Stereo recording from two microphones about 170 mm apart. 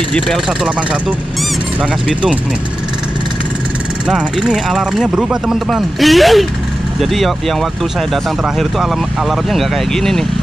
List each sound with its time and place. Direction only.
4.1 s speech: centre (ahead or behind)